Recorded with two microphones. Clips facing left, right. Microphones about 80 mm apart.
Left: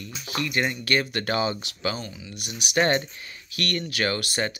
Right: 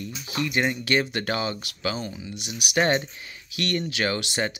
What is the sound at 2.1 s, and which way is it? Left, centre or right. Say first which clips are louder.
Speech: right 3 dB; right.